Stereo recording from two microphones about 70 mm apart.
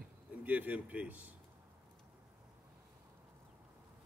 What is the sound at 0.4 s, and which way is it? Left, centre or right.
Speech, right.